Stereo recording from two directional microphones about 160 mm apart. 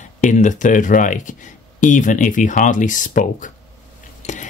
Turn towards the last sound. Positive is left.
turn(degrees=50)  # may be behind; listen again after turning